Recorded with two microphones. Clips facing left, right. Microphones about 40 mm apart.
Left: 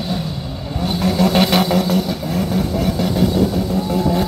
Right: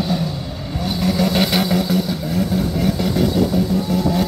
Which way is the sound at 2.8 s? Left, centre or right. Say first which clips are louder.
Even; centre.